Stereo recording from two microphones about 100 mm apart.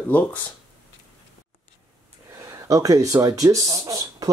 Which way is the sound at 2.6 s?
35° right (ahead or behind).